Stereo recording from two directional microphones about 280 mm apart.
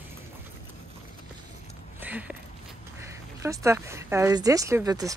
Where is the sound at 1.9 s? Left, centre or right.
Centre.